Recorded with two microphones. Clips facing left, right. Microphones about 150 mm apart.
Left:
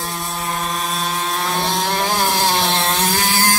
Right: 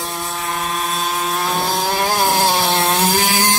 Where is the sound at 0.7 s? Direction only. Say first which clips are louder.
Right 1 dB; centre (ahead or behind).